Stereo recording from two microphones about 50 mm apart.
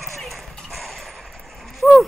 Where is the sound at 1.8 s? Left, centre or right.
Centre.